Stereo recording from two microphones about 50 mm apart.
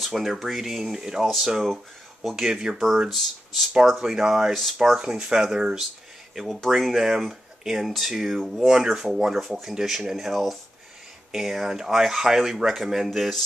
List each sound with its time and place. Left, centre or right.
0.1 s speech: centre
3.1 s speech: centre
3.9 s speech: centre
5.0 s speech: centre